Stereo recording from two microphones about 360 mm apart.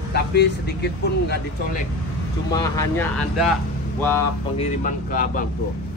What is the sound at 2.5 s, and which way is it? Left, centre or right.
Speech, centre.